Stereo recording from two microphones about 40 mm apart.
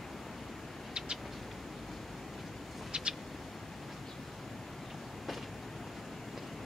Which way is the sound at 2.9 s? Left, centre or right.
Right.